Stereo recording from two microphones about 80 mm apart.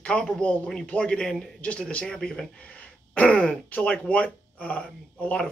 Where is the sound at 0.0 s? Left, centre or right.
Centre.